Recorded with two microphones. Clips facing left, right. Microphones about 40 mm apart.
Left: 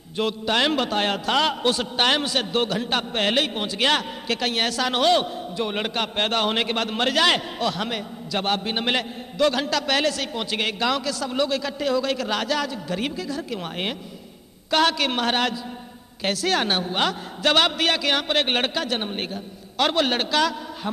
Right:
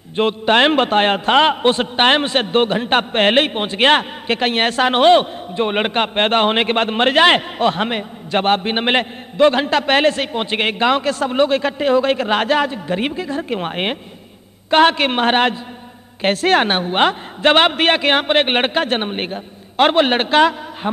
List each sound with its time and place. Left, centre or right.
0.1 s a man's voice: right